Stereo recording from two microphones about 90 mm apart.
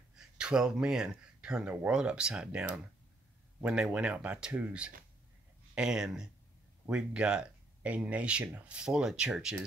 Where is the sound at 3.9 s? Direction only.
15° right (ahead or behind).